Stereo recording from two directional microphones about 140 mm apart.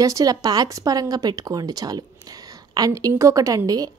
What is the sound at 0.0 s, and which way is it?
A woman's voice, 25° right (ahead or behind).